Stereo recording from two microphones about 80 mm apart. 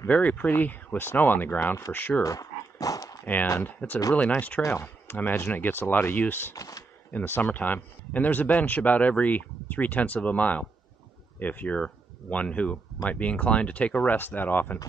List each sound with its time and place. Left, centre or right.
0.1 s speech: centre
2.2 s dog: left
3.6 s speech: left
6.5 s speech: left
7.1 s speech: left